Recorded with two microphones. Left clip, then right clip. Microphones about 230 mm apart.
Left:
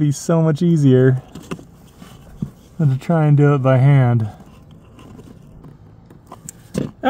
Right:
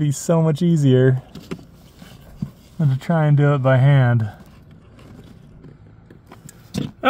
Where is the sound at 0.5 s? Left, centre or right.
Right.